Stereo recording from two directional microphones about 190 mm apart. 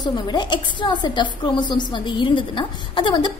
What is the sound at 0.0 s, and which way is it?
A woman's voice, 20° left (ahead or behind).